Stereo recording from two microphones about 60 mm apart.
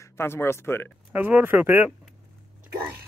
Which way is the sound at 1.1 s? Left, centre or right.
Right.